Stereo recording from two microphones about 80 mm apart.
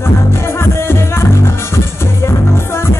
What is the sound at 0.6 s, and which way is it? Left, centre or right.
Music, left.